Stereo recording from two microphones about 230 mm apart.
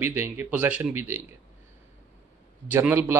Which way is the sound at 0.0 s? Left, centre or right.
Centre.